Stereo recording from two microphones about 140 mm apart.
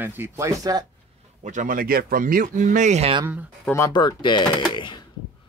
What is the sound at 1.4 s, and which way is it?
Speech, 65° right (ahead or behind).